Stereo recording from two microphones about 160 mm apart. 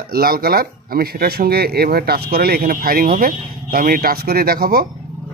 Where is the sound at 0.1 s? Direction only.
70° right (ahead or behind).